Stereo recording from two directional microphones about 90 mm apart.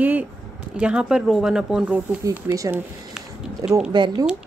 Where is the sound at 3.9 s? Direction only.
55° right (ahead or behind).